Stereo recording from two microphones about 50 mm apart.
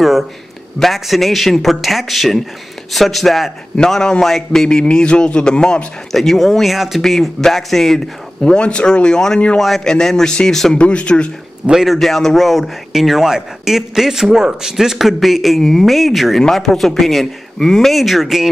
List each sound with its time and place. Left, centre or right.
0.7 s a man's voice: centre
3.7 s speech: centre
6.1 s a man's voice: centre
9.6 s a man's voice: centre
10.8 s speech: left
11.7 s a man's voice: centre